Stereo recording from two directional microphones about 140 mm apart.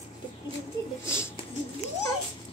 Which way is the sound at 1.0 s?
20° left (ahead or behind).